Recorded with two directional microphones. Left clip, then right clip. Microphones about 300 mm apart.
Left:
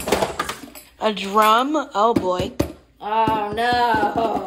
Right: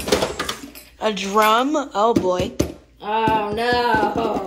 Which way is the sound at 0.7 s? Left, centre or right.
Centre.